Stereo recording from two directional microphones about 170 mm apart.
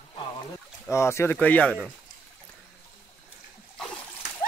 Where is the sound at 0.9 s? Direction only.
15° left (ahead or behind).